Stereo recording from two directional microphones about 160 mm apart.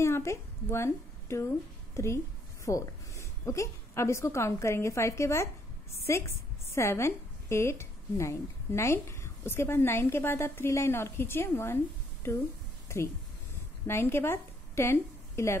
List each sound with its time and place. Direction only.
0.0 s a woman's voice: 15° left (ahead or behind)
2.6 s a woman's voice: 20° left (ahead or behind)
12.8 s a sound: 15° left (ahead or behind)
13.8 s a woman's voice: 15° left (ahead or behind)